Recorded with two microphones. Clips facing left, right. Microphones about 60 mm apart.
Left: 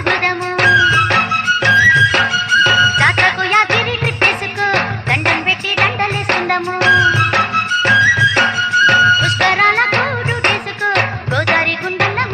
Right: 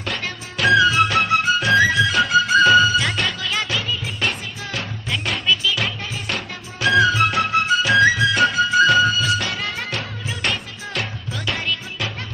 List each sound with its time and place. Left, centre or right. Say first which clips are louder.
0.1 s music: left 12 dB; left